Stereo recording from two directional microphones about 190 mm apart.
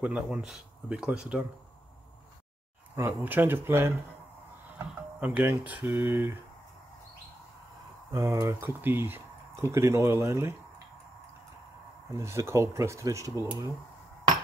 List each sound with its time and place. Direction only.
0.0 s speech: 5° right (ahead or behind)
3.0 s speech: 10° right (ahead or behind)
8.1 s speech: 15° right (ahead or behind)
12.1 s speech: 15° right (ahead or behind)